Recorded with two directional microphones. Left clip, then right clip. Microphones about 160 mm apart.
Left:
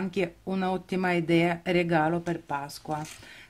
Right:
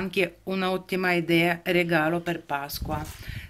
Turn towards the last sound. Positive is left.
turn(degrees=30)  # may be behind; listen again after turning